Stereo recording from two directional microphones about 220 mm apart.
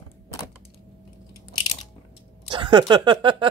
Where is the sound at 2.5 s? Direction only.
20° right (ahead or behind).